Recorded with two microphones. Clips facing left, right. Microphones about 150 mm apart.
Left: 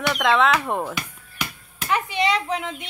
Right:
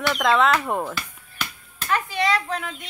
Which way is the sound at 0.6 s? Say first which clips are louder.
Even; centre (ahead or behind).